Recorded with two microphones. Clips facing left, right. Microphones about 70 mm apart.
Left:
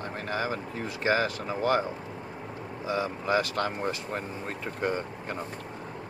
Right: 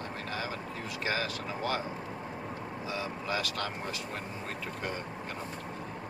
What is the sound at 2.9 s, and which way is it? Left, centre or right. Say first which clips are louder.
Speech: left 8 dB; left.